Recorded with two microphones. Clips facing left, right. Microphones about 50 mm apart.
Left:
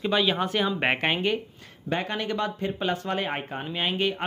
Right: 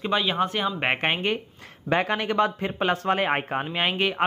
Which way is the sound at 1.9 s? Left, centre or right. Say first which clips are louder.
Right 5 dB; right.